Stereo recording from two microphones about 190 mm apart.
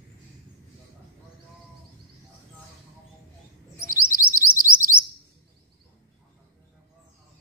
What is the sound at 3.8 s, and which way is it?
Chirp, 45° right (ahead or behind).